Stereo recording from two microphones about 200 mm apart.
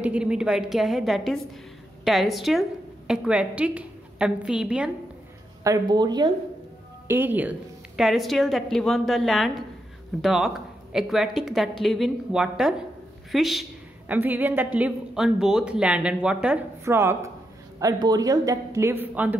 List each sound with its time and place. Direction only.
0.0 s a woman's voice: 5° right (ahead or behind)
5.6 s speech: 20° right (ahead or behind)
7.1 s a woman's voice: 10° right (ahead or behind)